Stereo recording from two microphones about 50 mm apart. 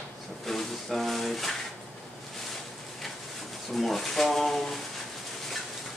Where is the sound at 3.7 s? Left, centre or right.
Centre.